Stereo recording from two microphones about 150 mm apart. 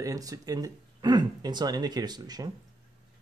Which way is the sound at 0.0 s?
25° right (ahead or behind).